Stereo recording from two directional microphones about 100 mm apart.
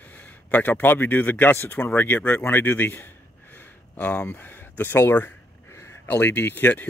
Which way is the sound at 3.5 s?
15° left (ahead or behind).